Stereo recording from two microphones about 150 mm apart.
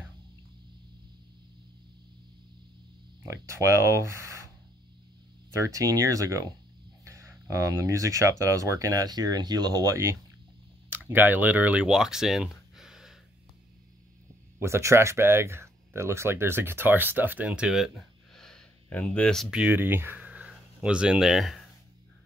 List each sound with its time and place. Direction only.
3.3 s speech: 20° right (ahead or behind)
5.5 s speech: 20° right (ahead or behind); by 13.2 s 5° right (ahead or behind)
14.6 s speech: 20° right (ahead or behind); by 19.6 s centre (ahead or behind)
19.6 s speech: 15° right (ahead or behind)